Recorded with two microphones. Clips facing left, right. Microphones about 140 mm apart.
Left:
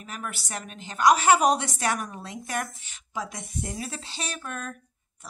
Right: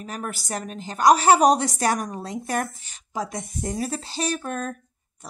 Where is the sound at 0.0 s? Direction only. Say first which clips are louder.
Right 5 dB; 40° right (ahead or behind).